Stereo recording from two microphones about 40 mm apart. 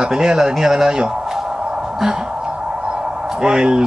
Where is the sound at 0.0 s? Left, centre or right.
Centre.